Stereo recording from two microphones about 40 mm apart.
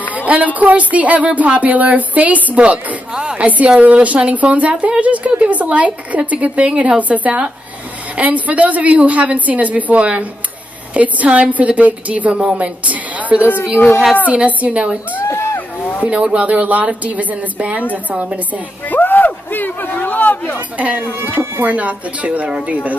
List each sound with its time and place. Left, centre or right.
0.1 s a sound: right
0.6 s speech: right
3.1 s a woman's voice: right
3.4 s speech: right
15.5 s a sound: left
16.0 s speech: right
18.9 s speech: left
20.7 s speech: right